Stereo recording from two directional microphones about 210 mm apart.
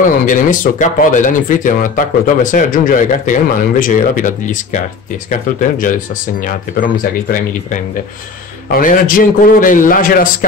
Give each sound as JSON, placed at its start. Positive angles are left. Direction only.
{"t": 0.0, "sound": "a man's voice", "side_deg": 40}